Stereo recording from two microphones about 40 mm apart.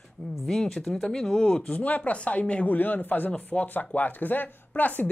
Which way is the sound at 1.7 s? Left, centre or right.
Left.